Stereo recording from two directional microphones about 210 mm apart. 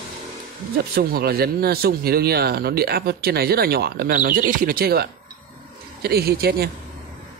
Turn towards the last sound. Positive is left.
turn(degrees=-45)  # may be behind; listen again after turning